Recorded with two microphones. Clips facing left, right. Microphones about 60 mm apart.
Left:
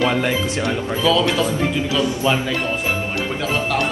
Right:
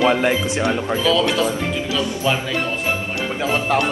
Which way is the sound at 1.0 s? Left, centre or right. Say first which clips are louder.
Left 1 dB; centre.